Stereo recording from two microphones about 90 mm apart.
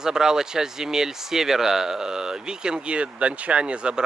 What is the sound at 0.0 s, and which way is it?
Speech, 5° right (ahead or behind).